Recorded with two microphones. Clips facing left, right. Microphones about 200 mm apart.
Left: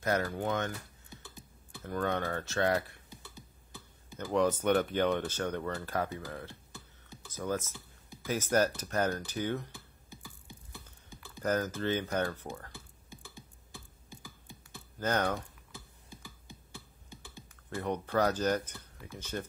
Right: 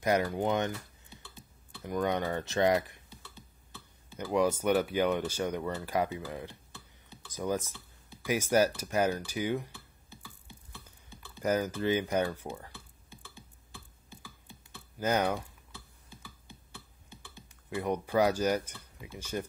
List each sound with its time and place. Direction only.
0.0 s speech: 15° right (ahead or behind)
1.1 s typing: 15° left (ahead or behind)
1.8 s speech: 15° right (ahead or behind)
3.1 s a sound: 15° left (ahead or behind)
4.2 s speech: 10° right (ahead or behind)
9.7 s a sound: 10° left (ahead or behind)
11.4 s speech: 10° right (ahead or behind)
12.7 s a sound: 10° left (ahead or behind)
14.2 s typing: 15° left (ahead or behind)
15.0 s speech: 10° right (ahead or behind)
15.7 s a sound: 15° left (ahead or behind)
17.6 s speech: 10° right (ahead or behind)